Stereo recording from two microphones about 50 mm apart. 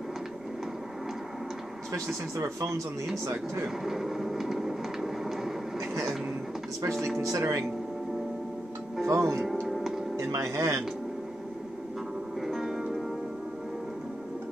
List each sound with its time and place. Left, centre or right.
2.3 s speech: right
3.8 s train: centre
7.2 s speech: right
9.0 s speech: right
9.6 s music: centre
10.1 s speech: right
12.4 s music: centre